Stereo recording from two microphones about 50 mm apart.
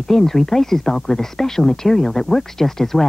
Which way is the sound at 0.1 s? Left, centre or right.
Centre.